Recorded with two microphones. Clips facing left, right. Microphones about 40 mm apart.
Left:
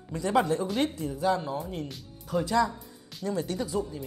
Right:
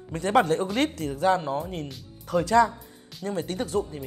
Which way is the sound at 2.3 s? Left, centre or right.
Right.